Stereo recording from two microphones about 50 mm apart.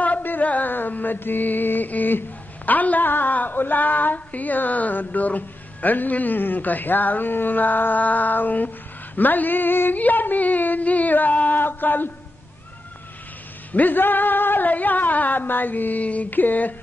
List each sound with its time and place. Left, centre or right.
0.0 s mantra: left
13.7 s mantra: left